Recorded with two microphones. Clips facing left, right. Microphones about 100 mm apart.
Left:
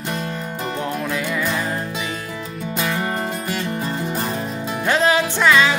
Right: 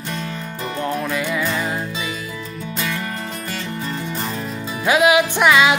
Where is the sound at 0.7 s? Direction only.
Centre (ahead or behind).